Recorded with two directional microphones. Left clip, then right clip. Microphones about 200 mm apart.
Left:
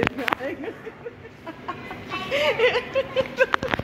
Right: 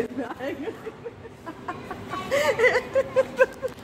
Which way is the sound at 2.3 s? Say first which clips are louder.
Even; 50° right (ahead or behind).